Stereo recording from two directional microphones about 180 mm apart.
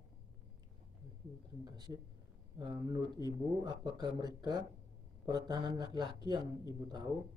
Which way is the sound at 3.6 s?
20° right (ahead or behind).